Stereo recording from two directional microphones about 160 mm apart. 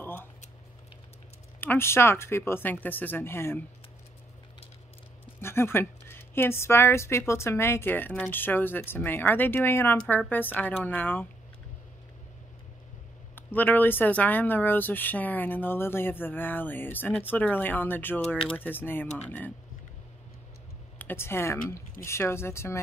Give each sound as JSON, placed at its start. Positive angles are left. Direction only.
{"t": 0.0, "sound": "a sound", "side_deg": 15}
{"t": 1.6, "sound": "a woman's voice", "side_deg": 15}
{"t": 5.4, "sound": "a woman's voice", "side_deg": 15}
{"t": 13.3, "sound": "a woman's voice", "side_deg": 10}
{"t": 21.0, "sound": "a woman's voice", "side_deg": 15}